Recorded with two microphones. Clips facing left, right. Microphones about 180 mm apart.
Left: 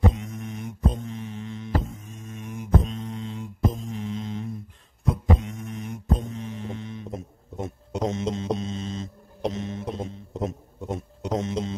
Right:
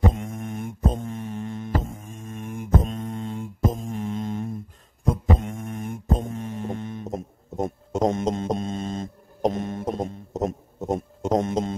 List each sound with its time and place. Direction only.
0.1 s mantra: 50° right (ahead or behind)